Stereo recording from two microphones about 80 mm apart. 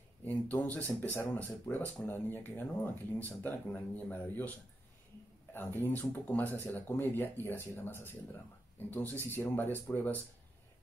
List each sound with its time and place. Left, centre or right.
0.2 s speech: left